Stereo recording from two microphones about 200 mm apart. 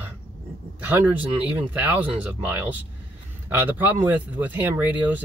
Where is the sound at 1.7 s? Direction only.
10° right (ahead or behind).